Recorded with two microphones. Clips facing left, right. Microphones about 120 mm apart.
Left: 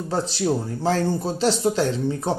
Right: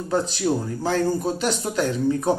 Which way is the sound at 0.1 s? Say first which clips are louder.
Right 1 dB; 30° left (ahead or behind).